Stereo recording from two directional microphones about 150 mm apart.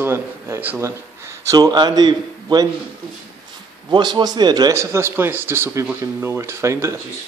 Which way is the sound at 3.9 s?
30° right (ahead or behind).